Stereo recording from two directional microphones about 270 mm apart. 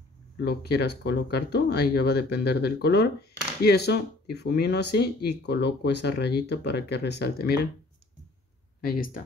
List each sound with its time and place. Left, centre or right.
0.4 s speech: left
8.8 s speech: left